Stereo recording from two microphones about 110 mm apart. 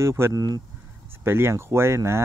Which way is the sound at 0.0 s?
25° right (ahead or behind).